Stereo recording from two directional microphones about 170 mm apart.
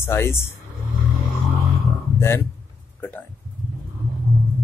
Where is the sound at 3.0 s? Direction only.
10° left (ahead or behind).